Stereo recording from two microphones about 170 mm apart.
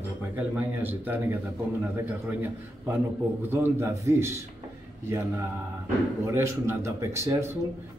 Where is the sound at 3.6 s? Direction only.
15° right (ahead or behind).